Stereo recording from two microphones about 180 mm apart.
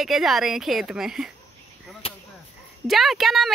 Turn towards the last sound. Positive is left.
turn(degrees=0)  # may be behind; listen again after turning